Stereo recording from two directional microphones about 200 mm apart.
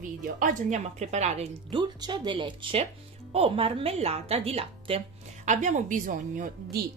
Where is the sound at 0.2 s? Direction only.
40° right (ahead or behind).